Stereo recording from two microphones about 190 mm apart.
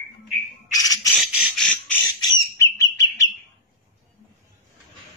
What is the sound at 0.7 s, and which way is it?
Bird, 20° left (ahead or behind).